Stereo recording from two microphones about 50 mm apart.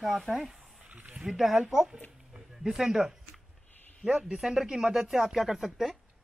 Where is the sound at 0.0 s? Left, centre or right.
Centre.